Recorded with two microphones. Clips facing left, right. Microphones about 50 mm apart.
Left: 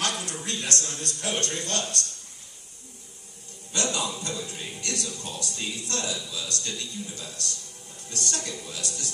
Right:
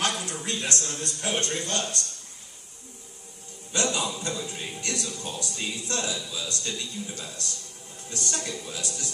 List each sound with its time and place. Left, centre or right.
0.0 s a sound: right
0.5 s a man's voice: right
3.7 s a man's voice: right